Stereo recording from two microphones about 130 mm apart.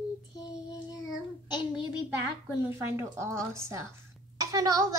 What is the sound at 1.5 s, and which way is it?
Speech, 35° left (ahead or behind).